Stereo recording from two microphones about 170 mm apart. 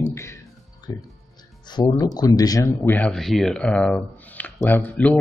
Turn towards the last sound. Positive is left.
turn(degrees=10)  # may be behind; listen again after turning